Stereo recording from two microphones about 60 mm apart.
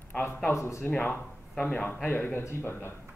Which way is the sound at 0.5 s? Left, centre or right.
Left.